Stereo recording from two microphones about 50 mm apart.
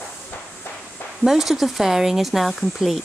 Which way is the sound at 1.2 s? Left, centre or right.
Centre.